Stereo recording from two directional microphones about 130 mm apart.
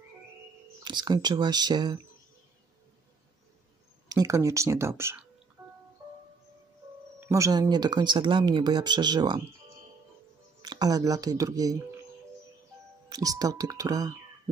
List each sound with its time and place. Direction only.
0.8 s speech: 35° right (ahead or behind)
4.1 s speech: 25° right (ahead or behind)
7.2 s speech: 25° right (ahead or behind)
10.6 s speech: 30° right (ahead or behind)
13.1 s speech: 30° right (ahead or behind)